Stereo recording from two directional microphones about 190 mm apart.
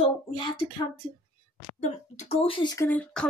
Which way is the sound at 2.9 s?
5° left (ahead or behind).